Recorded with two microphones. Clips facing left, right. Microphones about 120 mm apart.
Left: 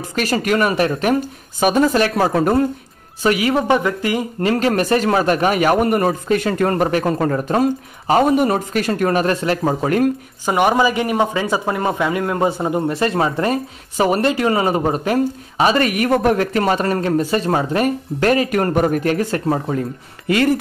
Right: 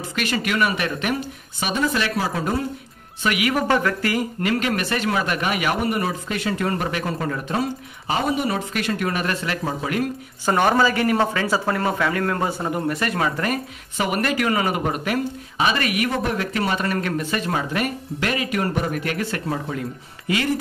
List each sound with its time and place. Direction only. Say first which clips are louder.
0.1 s speech: left 6 dB; 40° left (ahead or behind)
3.2 s speech: left 5 dB; 35° left (ahead or behind)
3.6 s speech: left 3 dB; 20° left (ahead or behind); by 10.0 s 45° left (ahead or behind)
10.4 s speech: left 3 dB; 15° left (ahead or behind); by 19.8 s 40° left (ahead or behind)